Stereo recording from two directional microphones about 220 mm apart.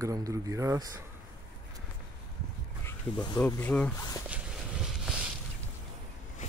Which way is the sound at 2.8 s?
15° left (ahead or behind).